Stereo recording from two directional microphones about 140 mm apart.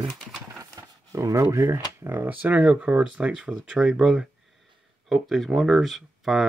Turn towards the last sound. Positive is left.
turn(degrees=-5)  # may be behind; listen again after turning